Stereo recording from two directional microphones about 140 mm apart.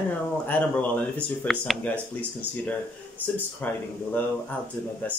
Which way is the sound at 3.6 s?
10° left (ahead or behind).